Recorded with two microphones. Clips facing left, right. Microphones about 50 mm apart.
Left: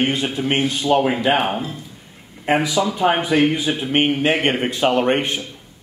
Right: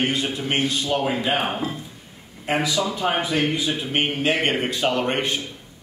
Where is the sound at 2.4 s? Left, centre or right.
Centre.